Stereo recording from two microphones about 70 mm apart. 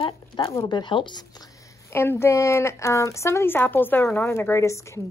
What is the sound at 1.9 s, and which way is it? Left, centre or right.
A woman's voice, left.